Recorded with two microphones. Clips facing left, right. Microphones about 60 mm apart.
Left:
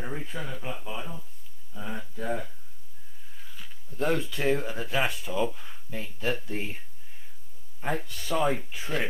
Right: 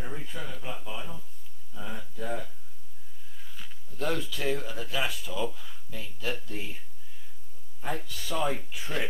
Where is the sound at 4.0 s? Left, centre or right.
Left.